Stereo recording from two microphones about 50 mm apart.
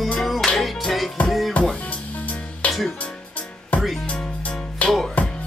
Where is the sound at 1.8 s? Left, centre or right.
Left.